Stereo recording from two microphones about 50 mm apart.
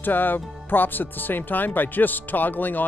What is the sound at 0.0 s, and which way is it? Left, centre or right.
A man's voice, left.